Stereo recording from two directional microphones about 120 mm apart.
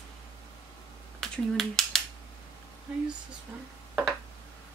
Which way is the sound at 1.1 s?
5° left (ahead or behind).